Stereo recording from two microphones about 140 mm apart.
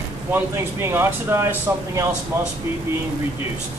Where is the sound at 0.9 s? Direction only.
15° right (ahead or behind).